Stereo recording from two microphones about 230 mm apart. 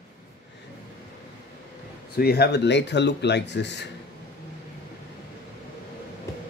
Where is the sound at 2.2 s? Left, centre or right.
Left.